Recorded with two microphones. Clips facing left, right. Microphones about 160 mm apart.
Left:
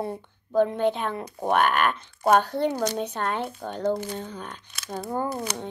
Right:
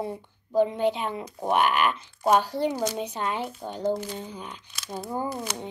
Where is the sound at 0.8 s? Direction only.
55° left (ahead or behind).